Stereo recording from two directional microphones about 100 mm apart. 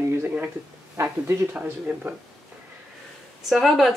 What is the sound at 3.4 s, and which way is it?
Speech, centre (ahead or behind).